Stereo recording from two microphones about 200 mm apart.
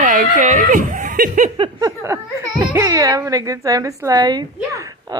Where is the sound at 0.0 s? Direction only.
40° right (ahead or behind).